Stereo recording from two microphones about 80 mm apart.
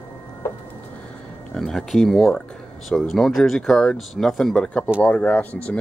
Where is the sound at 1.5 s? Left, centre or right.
Centre.